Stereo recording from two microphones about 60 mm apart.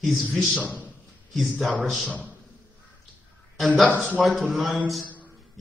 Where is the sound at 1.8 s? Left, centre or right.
Centre.